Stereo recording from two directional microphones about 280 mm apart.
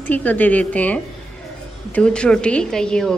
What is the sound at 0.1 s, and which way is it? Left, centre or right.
A woman's voice, centre.